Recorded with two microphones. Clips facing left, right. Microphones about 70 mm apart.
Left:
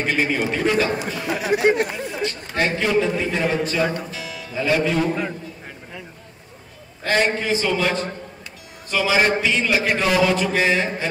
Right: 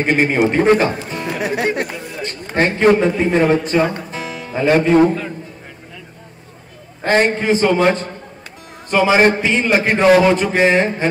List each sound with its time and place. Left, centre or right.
0.0 s a man's voice: right
1.1 s music: right
2.2 s a man's voice: right
4.1 s music: right
7.0 s a man's voice: right